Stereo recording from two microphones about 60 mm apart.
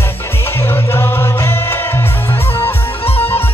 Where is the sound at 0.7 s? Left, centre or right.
Left.